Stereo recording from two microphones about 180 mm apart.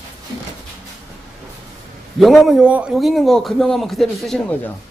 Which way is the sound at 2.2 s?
Centre (ahead or behind).